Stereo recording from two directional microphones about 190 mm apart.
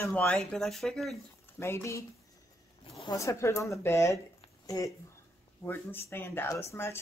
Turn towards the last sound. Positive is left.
turn(degrees=10)  # may be behind; listen again after turning